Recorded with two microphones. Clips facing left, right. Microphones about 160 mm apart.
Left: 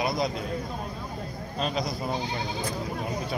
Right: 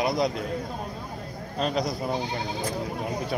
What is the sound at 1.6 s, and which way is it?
Speech, 60° right (ahead or behind).